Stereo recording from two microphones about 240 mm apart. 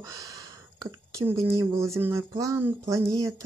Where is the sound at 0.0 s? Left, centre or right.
Centre.